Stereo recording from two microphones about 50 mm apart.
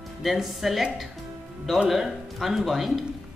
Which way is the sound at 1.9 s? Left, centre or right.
Centre.